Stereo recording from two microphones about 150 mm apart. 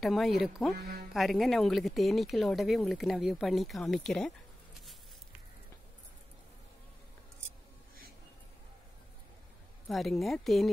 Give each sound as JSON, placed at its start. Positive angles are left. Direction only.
{"t": 0.0, "sound": "speech", "side_deg": 0}
{"t": 0.7, "sound": "music", "side_deg": -90}
{"t": 1.1, "sound": "speech", "side_deg": 0}
{"t": 9.8, "sound": "speech", "side_deg": 0}